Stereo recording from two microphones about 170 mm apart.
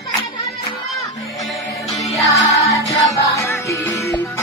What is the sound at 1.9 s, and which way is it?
Music, centre (ahead or behind).